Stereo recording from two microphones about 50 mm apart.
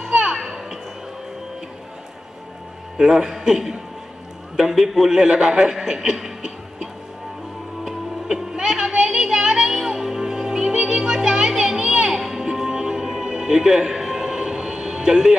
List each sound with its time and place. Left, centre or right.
0.1 s children playing: centre
0.4 s children playing: centre
3.0 s a man's voice: centre
7.8 s music: centre